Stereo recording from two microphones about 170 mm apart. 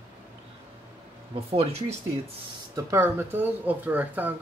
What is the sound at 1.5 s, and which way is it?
Speech, 35° right (ahead or behind).